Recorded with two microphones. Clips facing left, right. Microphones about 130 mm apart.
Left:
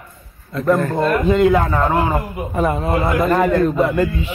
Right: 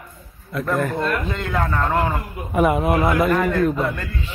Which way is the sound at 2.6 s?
10° right (ahead or behind).